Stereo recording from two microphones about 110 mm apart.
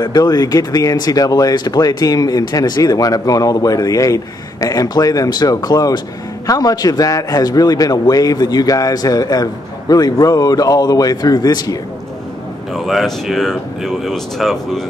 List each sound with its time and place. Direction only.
0.1 s speech: 35° left (ahead or behind)
12.7 s speech: centre (ahead or behind)